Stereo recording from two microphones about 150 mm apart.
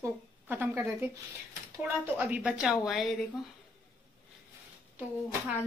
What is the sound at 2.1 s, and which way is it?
Speech, 10° right (ahead or behind).